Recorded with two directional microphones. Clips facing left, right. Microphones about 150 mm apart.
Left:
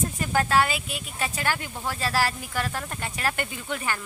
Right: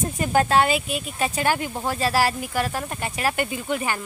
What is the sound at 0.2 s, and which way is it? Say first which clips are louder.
Speech: right 4 dB; 20° right (ahead or behind).